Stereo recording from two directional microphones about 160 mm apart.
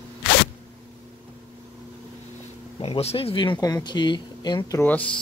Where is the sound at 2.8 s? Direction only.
40° left (ahead or behind).